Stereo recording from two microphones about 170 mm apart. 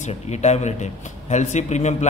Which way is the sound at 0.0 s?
40° left (ahead or behind).